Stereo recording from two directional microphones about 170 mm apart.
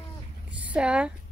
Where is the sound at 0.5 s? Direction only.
5° right (ahead or behind).